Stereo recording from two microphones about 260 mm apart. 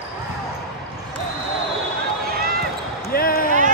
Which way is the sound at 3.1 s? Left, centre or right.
Left.